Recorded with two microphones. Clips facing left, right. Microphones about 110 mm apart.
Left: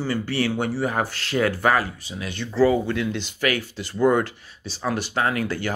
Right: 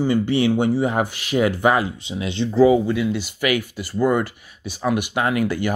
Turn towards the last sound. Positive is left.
turn(degrees=-15)  # may be behind; listen again after turning